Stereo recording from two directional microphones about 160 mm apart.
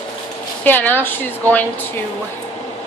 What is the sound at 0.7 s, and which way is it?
A woman's voice, 10° left (ahead or behind).